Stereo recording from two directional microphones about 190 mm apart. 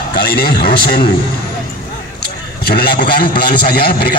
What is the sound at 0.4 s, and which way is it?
Speech, 55° left (ahead or behind).